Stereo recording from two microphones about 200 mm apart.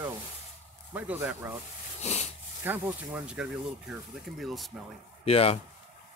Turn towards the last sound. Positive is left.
turn(degrees=30)  # may be behind; listen again after turning